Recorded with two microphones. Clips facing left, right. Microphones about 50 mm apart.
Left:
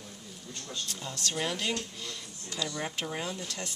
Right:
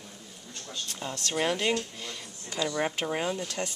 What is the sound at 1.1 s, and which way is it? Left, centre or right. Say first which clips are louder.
Speech: right 2 dB; centre.